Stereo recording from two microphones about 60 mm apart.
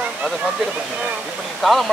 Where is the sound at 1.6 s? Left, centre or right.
Centre.